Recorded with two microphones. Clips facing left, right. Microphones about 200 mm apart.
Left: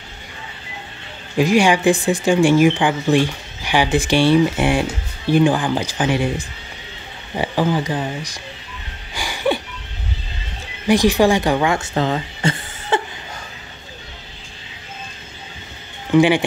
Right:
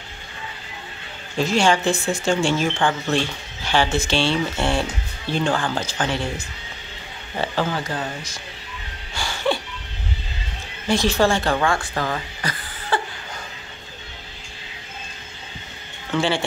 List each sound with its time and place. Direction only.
1.4 s speech: 15° left (ahead or behind)
9.1 s music: 15° left (ahead or behind)
10.9 s speech: 15° left (ahead or behind)
16.1 s speech: 15° left (ahead or behind)